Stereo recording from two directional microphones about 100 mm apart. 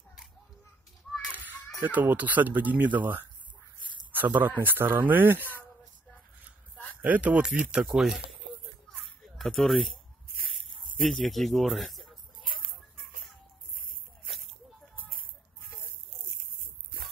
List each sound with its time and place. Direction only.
1.3 s children playing: 15° right (ahead or behind)
1.8 s speech: 20° right (ahead or behind)
7.0 s speech: 15° right (ahead or behind)
8.8 s a sound: 5° left (ahead or behind)
11.1 s speech: centre (ahead or behind)